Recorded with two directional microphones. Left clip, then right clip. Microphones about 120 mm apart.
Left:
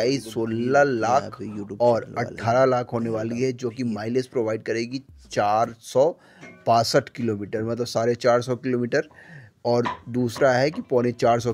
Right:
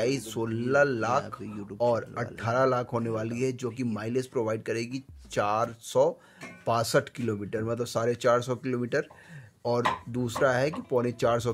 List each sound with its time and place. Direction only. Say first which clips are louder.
0.0 s speech: left 5 dB; 25° left (ahead or behind)